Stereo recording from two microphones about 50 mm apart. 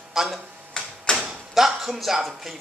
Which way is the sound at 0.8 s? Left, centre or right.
Centre.